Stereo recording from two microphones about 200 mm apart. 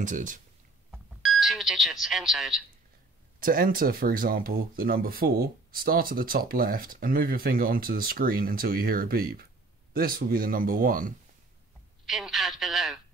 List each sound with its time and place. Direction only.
0.0 s speech: 40° right (ahead or behind)
0.9 s speech: centre (ahead or behind)
3.3 s speech: 45° right (ahead or behind)
12.1 s a man's voice: centre (ahead or behind)